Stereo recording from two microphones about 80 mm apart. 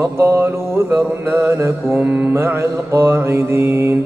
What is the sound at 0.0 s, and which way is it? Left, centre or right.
Mantra, right.